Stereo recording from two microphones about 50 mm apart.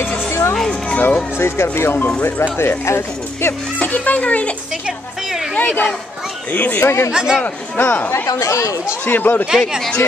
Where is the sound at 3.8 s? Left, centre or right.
Left.